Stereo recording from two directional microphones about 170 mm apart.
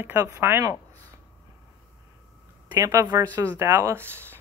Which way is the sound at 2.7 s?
20° right (ahead or behind).